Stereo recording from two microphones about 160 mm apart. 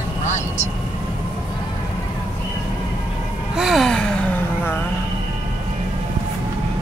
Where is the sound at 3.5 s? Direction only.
Centre (ahead or behind).